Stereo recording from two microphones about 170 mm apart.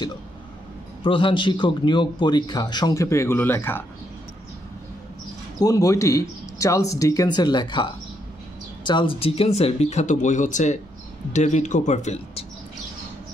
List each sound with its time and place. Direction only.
1.0 s a man's voice: 30° left (ahead or behind); by 3.8 s 10° left (ahead or behind)
5.6 s a man's voice: 20° left (ahead or behind); by 12.4 s 40° left (ahead or behind)